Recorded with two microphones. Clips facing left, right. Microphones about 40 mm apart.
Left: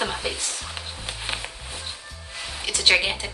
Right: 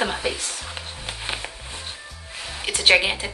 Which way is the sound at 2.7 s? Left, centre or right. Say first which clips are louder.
Right 3 dB; centre.